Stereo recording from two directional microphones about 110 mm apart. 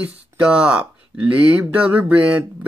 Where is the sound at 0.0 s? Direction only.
10° right (ahead or behind).